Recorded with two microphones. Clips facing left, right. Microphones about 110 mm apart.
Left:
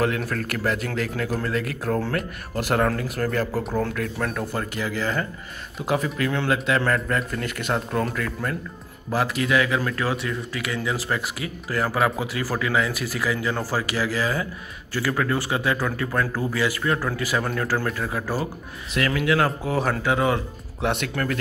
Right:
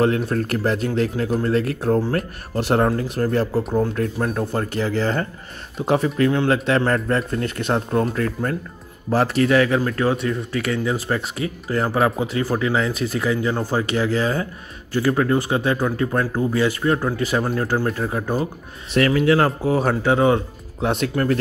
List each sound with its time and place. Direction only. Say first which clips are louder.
0.0 s speech: right 5 dB; 30° right (ahead or behind)
3.9 s speech: right 4 dB; 35° right (ahead or behind)
18.9 s speech: right 5 dB; 40° right (ahead or behind)
19.7 s speech: right 4 dB; 30° right (ahead or behind)